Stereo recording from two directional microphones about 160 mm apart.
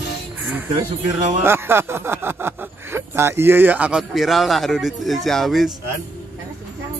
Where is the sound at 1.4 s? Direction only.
15° right (ahead or behind).